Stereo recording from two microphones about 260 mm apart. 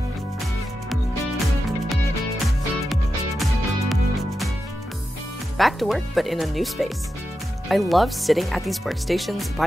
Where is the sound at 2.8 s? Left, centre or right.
Centre.